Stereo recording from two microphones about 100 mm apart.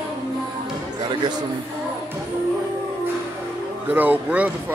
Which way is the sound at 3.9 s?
15° right (ahead or behind).